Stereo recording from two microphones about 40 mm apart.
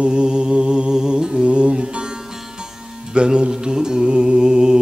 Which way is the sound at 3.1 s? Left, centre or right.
Right.